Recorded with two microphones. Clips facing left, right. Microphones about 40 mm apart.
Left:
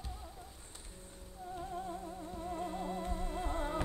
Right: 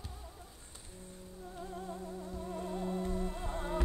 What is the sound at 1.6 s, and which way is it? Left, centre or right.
Music, centre.